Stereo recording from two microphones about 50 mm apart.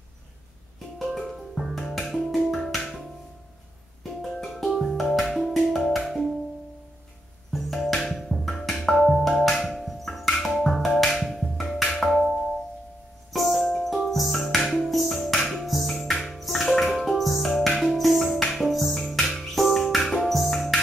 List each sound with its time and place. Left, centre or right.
0.9 s music: centre
4.2 s music: centre
7.5 s music: centre